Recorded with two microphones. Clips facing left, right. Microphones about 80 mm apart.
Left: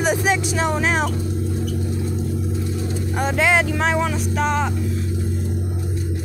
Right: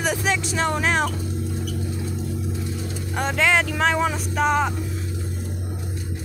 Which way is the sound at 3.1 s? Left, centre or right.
Centre.